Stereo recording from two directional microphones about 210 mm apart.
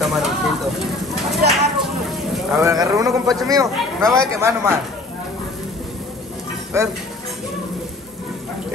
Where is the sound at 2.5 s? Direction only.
15° right (ahead or behind).